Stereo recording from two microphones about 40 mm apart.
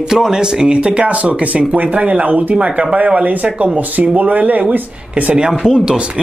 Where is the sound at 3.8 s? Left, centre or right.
Right.